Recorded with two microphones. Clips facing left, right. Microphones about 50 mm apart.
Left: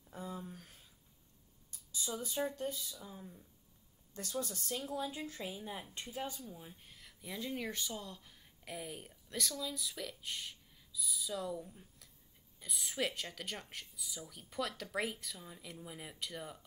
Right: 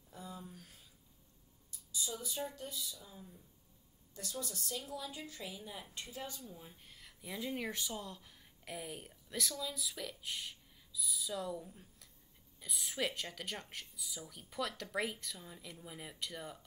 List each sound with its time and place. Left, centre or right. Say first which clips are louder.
0.1 s a sound: left 4 dB; left
1.7 s speech: left 1 dB; left
3.1 s speech: left 4 dB; left
4.1 s a woman's voice: left 4 dB; left
6.4 s speech: left 2 dB; centre